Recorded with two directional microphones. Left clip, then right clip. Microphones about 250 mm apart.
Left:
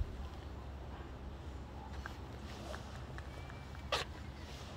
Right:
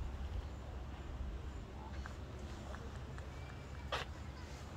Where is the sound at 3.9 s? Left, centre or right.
Left.